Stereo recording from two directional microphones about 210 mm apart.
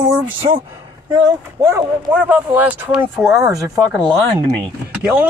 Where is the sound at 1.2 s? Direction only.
15° right (ahead or behind).